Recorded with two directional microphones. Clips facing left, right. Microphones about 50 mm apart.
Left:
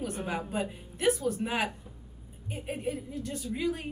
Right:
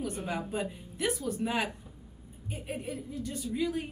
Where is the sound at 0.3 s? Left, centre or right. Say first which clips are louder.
Left 2 dB; centre.